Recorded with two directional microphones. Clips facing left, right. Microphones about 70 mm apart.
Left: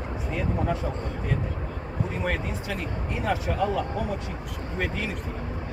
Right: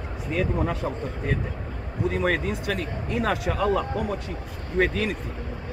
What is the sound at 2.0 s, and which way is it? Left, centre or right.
Speech, right.